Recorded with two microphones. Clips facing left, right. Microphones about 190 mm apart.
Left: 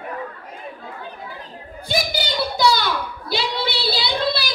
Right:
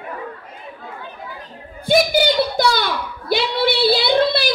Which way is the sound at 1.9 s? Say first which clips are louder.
Right 9 dB; 55° right (ahead or behind).